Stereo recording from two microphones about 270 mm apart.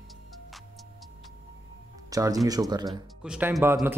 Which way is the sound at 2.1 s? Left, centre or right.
Centre.